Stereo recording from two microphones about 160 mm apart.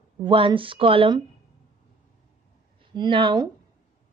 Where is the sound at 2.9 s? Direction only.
30° right (ahead or behind).